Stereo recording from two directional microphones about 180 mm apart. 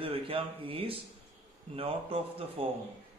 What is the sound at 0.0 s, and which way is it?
Speech, 30° right (ahead or behind).